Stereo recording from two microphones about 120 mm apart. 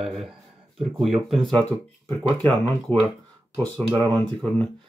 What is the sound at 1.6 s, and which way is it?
Speech, 15° left (ahead or behind).